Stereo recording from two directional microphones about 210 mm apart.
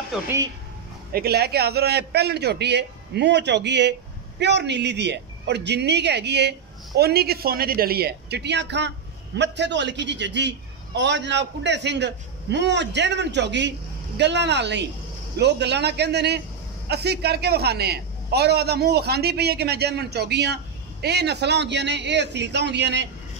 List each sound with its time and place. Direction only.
1.1 s a man's voice: 50° right (ahead or behind)